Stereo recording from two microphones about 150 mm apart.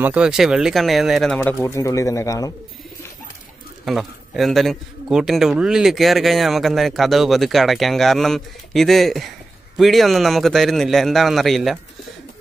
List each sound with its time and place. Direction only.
0.0 s a man's voice: 5° right (ahead or behind)
1.5 s speech: 20° left (ahead or behind)
3.8 s a man's voice: centre (ahead or behind)